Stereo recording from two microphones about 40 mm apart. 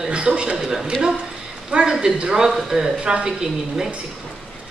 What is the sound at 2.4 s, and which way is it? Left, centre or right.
A woman's voice, centre.